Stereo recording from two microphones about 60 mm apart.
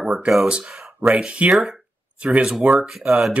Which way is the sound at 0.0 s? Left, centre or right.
Centre.